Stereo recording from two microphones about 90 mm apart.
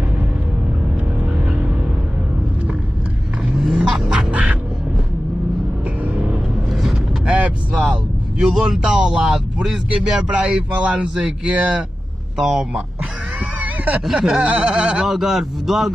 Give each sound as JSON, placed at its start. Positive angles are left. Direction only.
{"t": 3.5, "sound": "music", "side_deg": -5}
{"t": 6.7, "sound": "vehicle", "side_deg": -5}
{"t": 8.4, "sound": "speech", "side_deg": -5}
{"t": 13.6, "sound": "a sound", "side_deg": -15}
{"t": 14.0, "sound": "speech", "side_deg": -5}